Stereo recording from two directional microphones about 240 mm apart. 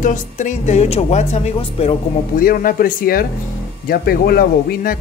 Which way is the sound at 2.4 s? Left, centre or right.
Left.